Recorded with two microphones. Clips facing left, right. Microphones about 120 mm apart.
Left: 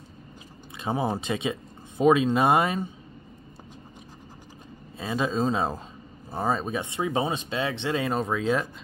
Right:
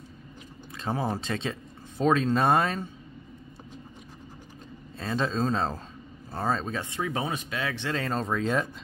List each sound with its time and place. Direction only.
0.7 s speech: 15° left (ahead or behind)
4.9 s speech: 10° left (ahead or behind)